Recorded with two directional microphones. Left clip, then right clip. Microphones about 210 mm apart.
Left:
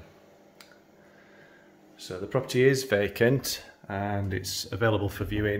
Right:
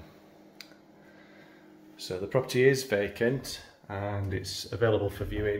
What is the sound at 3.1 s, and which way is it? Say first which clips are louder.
Speech: left 5 dB; 50° left (ahead or behind).